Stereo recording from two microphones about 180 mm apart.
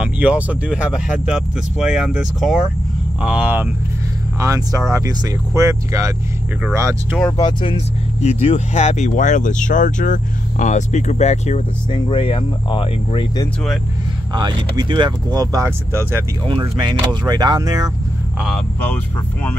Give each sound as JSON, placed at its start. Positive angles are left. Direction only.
{"t": 0.0, "sound": "speech", "side_deg": -5}
{"t": 7.2, "sound": "speech", "side_deg": 20}
{"t": 7.7, "sound": "speech", "side_deg": 35}
{"t": 14.3, "sound": "speech", "side_deg": -25}
{"t": 16.4, "sound": "speech", "side_deg": -25}